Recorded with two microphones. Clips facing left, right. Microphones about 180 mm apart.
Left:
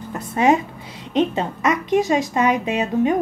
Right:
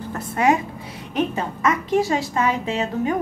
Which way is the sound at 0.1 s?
20° left (ahead or behind).